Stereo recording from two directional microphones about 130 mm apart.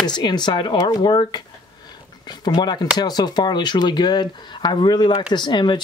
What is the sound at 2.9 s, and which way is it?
Speech, 30° left (ahead or behind).